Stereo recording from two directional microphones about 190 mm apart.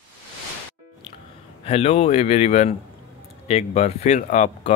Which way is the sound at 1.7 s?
30° left (ahead or behind).